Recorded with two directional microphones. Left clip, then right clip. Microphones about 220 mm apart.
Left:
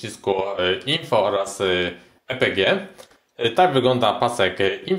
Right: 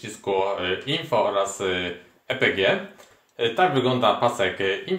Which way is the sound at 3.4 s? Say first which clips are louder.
Left 4 dB; 50° left (ahead or behind).